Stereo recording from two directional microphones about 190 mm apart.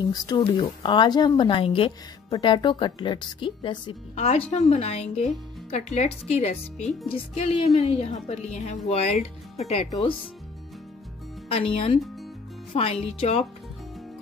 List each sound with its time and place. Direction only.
0.0 s speech: 20° left (ahead or behind)
4.1 s a woman's voice: 35° left (ahead or behind)
11.4 s a woman's voice: 30° left (ahead or behind)